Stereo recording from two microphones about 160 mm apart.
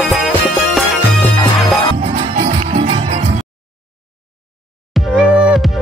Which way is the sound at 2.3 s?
45° right (ahead or behind).